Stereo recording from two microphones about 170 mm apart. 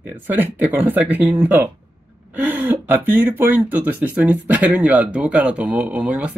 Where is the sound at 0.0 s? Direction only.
10° right (ahead or behind).